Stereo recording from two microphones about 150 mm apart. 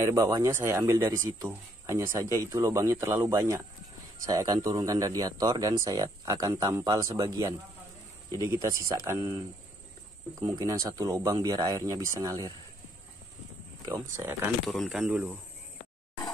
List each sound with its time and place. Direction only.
0.0 s a man's voice: 20° right (ahead or behind)
10.6 s a man's voice: 20° right (ahead or behind)
13.8 s a man's voice: 20° right (ahead or behind)
14.7 s speech: centre (ahead or behind)